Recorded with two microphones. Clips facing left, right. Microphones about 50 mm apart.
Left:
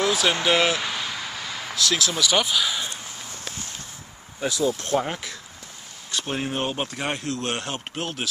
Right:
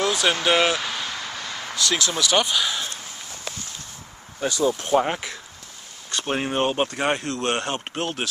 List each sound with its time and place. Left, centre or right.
0.0 s speech: centre
4.4 s speech: centre
6.2 s speech: centre
7.9 s speech: centre